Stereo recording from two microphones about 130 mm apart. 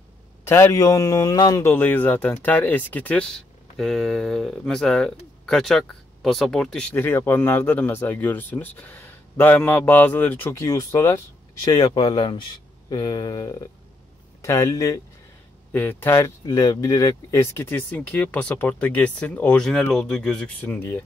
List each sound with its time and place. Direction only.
0.5 s a man's voice: 25° left (ahead or behind)
1.6 s speech: 15° left (ahead or behind)
11.7 s a man's voice: 35° left (ahead or behind)
15.7 s speech: 15° left (ahead or behind)